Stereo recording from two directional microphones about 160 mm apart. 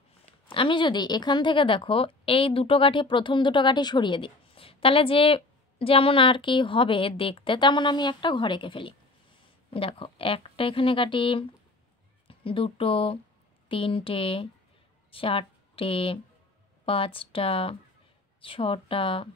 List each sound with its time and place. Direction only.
0.5 s a woman's voice: 30° left (ahead or behind)